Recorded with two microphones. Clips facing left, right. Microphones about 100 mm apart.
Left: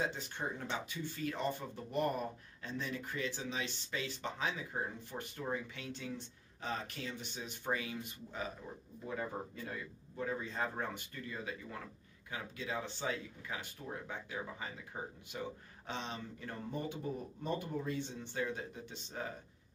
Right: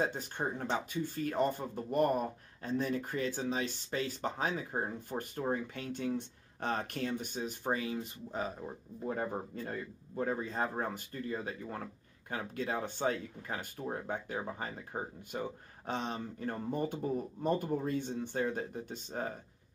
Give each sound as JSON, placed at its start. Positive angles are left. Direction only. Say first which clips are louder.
{"t": 0.0, "sound": "speech", "louder": "right 4 dB", "side_deg": -45}